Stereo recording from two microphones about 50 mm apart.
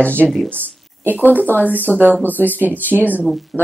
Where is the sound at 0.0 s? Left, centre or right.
Left.